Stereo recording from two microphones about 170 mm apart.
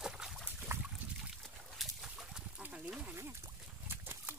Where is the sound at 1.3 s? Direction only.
Centre (ahead or behind).